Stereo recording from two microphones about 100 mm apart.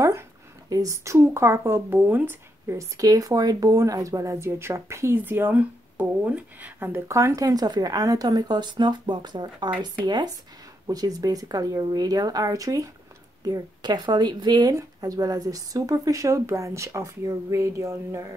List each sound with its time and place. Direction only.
0.7 s speech: 35° right (ahead or behind); by 2.8 s 20° right (ahead or behind)
3.0 s a woman's voice: 35° right (ahead or behind)